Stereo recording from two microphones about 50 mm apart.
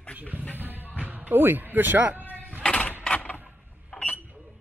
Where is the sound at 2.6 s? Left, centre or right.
Left.